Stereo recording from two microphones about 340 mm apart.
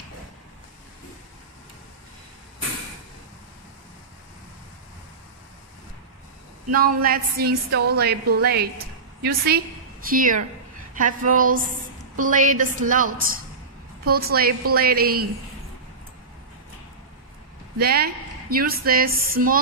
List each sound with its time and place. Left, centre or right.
6.7 s a woman's voice: right
14.0 s a woman's voice: right
17.7 s a woman's voice: right